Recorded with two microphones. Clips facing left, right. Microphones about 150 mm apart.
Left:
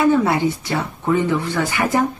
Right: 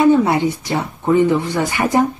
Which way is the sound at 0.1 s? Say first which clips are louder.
Right 3 dB; 20° right (ahead or behind).